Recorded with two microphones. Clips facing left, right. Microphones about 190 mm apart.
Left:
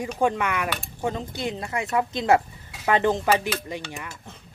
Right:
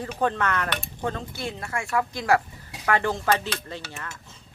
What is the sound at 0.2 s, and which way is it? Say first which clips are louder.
Speech: left 1 dB; 10° left (ahead or behind).